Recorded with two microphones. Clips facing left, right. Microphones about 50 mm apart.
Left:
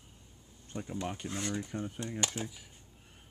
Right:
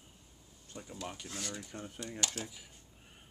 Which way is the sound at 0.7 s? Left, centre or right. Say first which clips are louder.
Left 6 dB; left.